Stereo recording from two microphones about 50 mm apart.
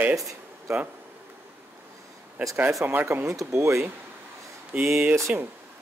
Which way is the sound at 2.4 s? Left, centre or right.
Right.